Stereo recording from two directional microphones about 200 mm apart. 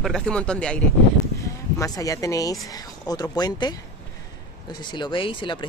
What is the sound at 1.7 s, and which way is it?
Speech, 15° left (ahead or behind).